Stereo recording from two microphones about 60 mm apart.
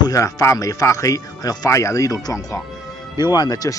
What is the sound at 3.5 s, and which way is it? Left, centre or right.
Speech, left.